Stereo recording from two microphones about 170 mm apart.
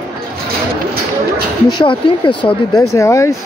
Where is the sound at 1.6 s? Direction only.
30° left (ahead or behind).